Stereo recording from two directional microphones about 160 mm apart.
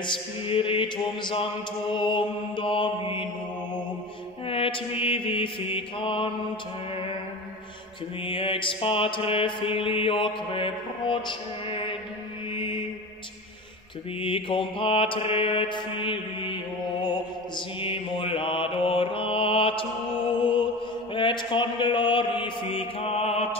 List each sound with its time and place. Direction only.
0.0 s mantra: 35° left (ahead or behind)
4.5 s mantra: 35° left (ahead or behind)
8.2 s mantra: 35° left (ahead or behind)
14.2 s mantra: 35° left (ahead or behind)